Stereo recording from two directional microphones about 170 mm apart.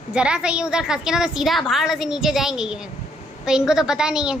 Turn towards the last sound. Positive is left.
turn(degrees=-5)  # may be behind; listen again after turning